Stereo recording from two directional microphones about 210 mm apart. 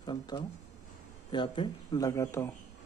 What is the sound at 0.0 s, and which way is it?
Speech, 20° left (ahead or behind).